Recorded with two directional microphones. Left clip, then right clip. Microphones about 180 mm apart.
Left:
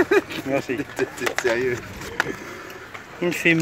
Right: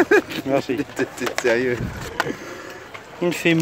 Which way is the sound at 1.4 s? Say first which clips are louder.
Right 3 dB; 60° right (ahead or behind).